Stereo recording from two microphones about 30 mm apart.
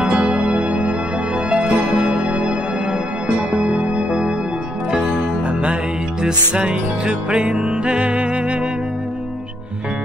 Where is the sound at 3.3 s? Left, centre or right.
Right.